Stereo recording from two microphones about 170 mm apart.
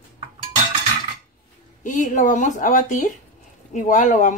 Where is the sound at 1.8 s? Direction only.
50° left (ahead or behind).